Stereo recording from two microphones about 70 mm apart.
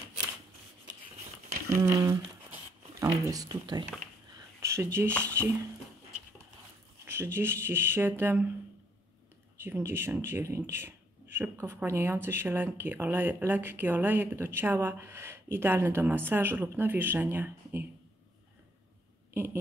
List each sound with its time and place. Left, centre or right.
1.7 s speech: right
4.6 s a sound: right
4.9 s speech: right
7.3 s speech: right
9.6 s speech: right
19.3 s a sound: right